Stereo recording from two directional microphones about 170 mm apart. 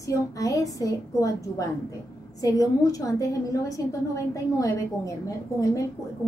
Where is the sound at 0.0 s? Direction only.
20° left (ahead or behind).